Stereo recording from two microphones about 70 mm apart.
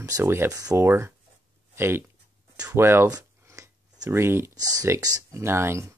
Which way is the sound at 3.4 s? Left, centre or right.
Right.